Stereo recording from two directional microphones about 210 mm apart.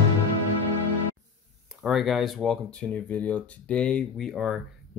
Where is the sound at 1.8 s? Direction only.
Centre (ahead or behind).